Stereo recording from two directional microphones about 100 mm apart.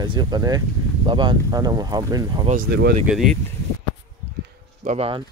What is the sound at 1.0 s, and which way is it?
Speech, 55° right (ahead or behind).